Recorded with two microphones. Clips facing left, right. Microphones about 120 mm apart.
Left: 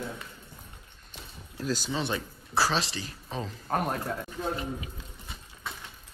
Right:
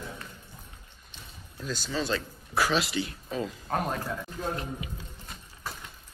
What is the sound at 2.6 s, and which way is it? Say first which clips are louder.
Speech: right 2 dB; 35° left (ahead or behind).